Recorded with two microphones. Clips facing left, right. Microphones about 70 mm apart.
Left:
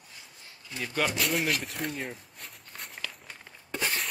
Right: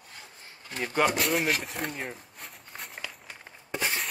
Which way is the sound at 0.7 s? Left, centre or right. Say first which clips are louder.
Right 3 dB; right.